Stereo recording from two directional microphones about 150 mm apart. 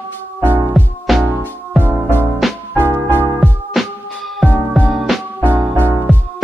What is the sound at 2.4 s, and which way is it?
Music, centre (ahead or behind).